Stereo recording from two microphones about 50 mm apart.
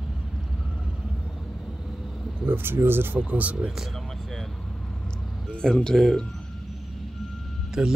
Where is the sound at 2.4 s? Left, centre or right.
Right.